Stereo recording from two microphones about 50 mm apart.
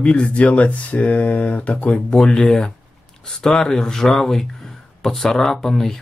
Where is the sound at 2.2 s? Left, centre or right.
Centre.